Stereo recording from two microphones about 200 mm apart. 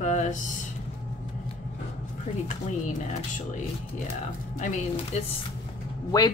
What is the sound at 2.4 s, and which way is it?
Speech, 40° left (ahead or behind).